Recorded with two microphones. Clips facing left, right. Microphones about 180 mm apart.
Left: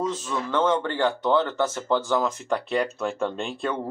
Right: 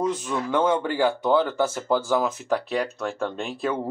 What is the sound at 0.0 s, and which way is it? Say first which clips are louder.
Speech: right 2 dB; 15° right (ahead or behind).